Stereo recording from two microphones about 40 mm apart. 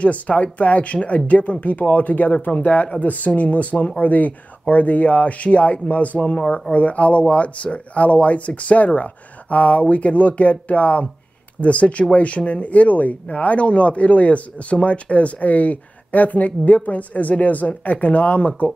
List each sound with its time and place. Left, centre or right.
0.0 s speech: left
2.6 s speech: left